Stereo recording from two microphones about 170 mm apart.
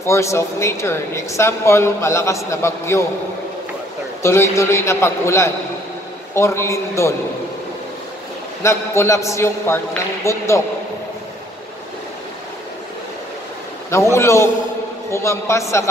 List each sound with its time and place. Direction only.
0.0 s speech: 15° left (ahead or behind)
4.2 s speech: 15° left (ahead or behind)
8.6 s speech: 15° left (ahead or behind)
13.8 s speech: 15° left (ahead or behind)